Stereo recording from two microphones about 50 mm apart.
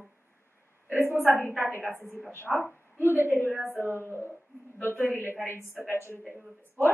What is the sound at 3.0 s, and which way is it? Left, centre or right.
Speech, right.